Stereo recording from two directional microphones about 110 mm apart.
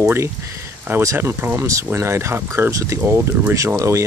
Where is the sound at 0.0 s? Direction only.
20° right (ahead or behind).